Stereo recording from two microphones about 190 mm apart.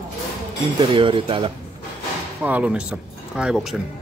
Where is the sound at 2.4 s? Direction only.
5° right (ahead or behind).